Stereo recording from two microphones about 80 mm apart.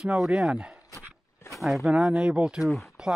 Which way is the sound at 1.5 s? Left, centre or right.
Centre.